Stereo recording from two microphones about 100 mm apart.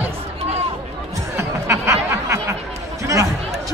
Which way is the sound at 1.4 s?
30° right (ahead or behind).